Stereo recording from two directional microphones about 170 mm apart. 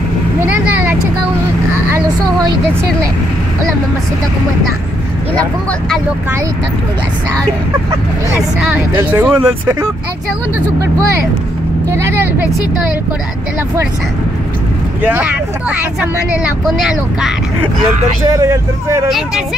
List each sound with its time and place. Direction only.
0.5 s vehicle: 10° right (ahead or behind)
5.3 s speech: 5° left (ahead or behind)
8.5 s speech: 10° right (ahead or behind)
11.9 s speech: 15° right (ahead or behind)
15.0 s speech: 10° right (ahead or behind)
18.3 s speech: 15° right (ahead or behind)